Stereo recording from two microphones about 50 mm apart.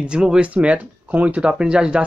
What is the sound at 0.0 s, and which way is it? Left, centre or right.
Speech, centre.